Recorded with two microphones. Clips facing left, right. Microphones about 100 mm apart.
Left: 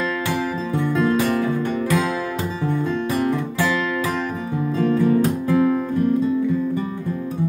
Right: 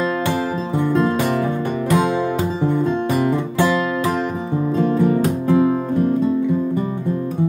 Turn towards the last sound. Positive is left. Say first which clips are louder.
# right 2 dB
turn(degrees=-25)  # may be behind; listen again after turning